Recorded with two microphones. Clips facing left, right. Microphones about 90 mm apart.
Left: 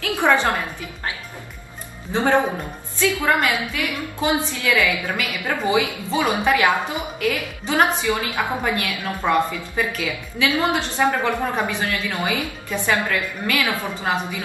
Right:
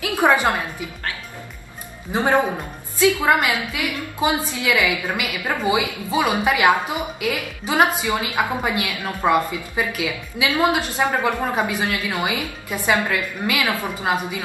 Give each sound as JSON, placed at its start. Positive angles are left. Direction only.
{"t": 0.0, "sound": "a woman's voice", "side_deg": -15}
{"t": 2.1, "sound": "a woman's voice", "side_deg": -15}